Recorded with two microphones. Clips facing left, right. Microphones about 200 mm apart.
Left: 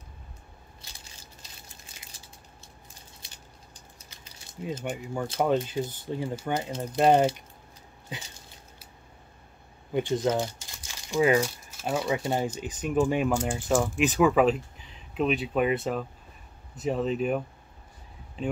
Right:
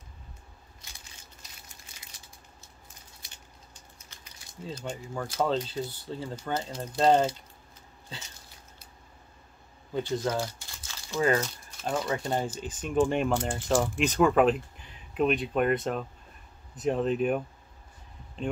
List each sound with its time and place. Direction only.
4.6 s speech: 15° left (ahead or behind)
9.9 s speech: 20° left (ahead or behind); by 17.4 s centre (ahead or behind)
18.4 s speech: 5° left (ahead or behind)